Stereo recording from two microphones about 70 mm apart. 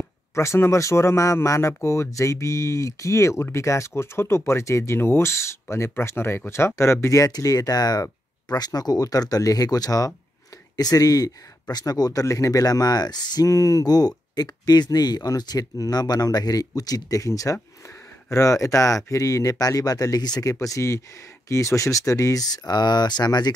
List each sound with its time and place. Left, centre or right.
0.3 s speech: left
13.5 s speech: left
20.5 s speech: left